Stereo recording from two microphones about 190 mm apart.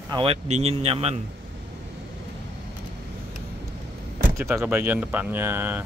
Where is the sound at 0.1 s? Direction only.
30° right (ahead or behind).